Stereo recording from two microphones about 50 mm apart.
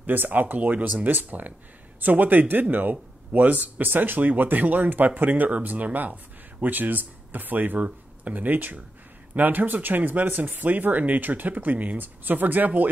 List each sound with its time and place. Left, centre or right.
0.0 s speech: right